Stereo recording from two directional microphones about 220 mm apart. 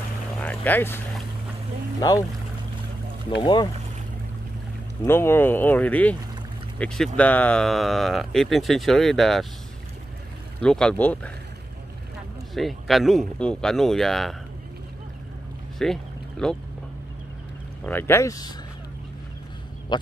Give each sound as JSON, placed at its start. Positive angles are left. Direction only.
{"t": 0.4, "sound": "boat", "side_deg": 5}
{"t": 2.0, "sound": "speech", "side_deg": 15}
{"t": 5.0, "sound": "speech", "side_deg": 10}
{"t": 10.6, "sound": "speech", "side_deg": 5}
{"t": 12.5, "sound": "speech", "side_deg": 0}
{"t": 15.8, "sound": "a sound", "side_deg": 0}
{"t": 17.8, "sound": "speech", "side_deg": 10}
{"t": 19.9, "sound": "speech", "side_deg": 20}